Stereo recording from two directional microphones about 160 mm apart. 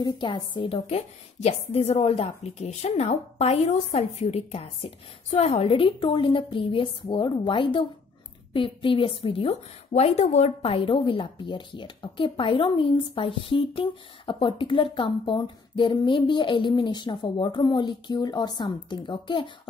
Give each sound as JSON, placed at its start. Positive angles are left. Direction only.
{"t": 0.0, "sound": "a woman's voice", "side_deg": 30}